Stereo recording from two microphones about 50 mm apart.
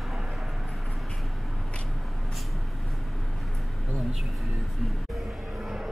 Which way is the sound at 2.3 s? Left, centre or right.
Centre.